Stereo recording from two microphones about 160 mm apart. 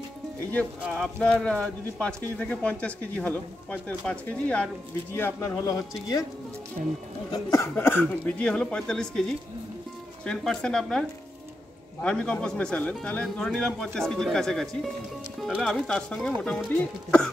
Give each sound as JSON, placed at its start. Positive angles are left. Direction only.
{"t": 0.8, "sound": "speech", "side_deg": 0}
{"t": 7.5, "sound": "speech", "side_deg": 15}
{"t": 10.2, "sound": "speech", "side_deg": 5}